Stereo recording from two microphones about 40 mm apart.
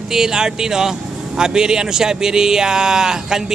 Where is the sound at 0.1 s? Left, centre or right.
Centre.